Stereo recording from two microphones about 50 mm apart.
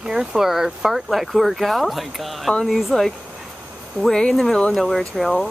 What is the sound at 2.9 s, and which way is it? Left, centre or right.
Speech, centre.